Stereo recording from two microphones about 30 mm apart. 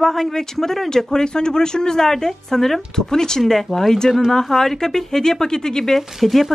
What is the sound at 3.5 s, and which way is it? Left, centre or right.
Speech, centre.